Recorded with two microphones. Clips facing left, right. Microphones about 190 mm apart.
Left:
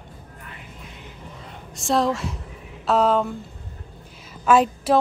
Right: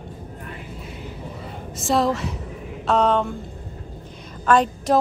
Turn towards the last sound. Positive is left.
turn(degrees=5)  # may be behind; listen again after turning